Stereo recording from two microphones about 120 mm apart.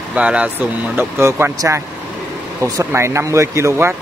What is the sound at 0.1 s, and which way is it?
Speech, 10° right (ahead or behind).